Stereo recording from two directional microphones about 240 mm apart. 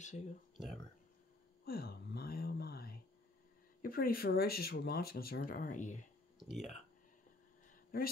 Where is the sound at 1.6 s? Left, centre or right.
Left.